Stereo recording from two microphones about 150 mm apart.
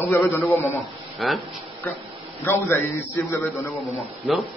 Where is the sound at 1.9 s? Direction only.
15° left (ahead or behind).